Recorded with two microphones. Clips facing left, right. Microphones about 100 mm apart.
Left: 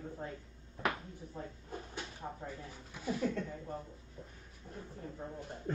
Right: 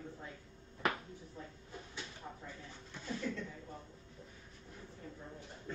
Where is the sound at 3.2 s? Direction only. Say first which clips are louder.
Left 5 dB; 50° left (ahead or behind).